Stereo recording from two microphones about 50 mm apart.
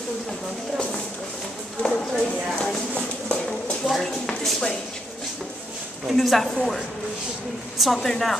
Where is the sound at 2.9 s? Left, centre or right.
Left.